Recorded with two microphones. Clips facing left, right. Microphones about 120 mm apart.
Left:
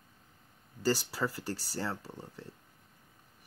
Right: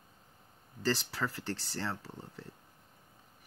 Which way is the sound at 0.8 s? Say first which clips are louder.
Left 2 dB; 10° left (ahead or behind).